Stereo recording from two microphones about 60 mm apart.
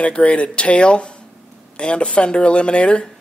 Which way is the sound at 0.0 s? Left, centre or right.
Left.